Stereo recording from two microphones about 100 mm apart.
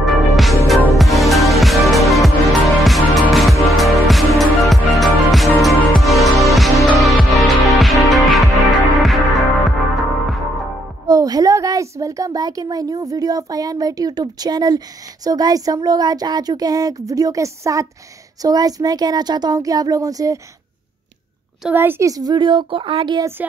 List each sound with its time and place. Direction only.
0.0 s music: centre (ahead or behind)
11.1 s a child's voice: 40° right (ahead or behind)
21.7 s a woman's voice: 20° right (ahead or behind)
22.0 s speech: 40° right (ahead or behind); by 23.2 s 55° right (ahead or behind)